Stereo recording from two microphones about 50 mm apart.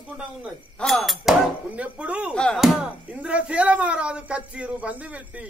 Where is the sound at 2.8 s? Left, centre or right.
Right.